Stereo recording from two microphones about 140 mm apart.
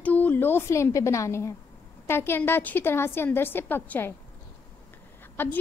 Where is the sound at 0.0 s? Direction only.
10° left (ahead or behind).